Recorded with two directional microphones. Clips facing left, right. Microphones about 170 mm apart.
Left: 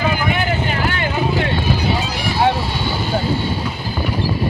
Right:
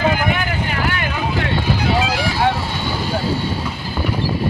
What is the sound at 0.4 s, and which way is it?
Vehicle, 25° left (ahead or behind).